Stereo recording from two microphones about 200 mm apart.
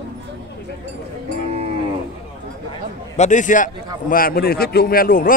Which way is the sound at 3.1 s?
35° left (ahead or behind).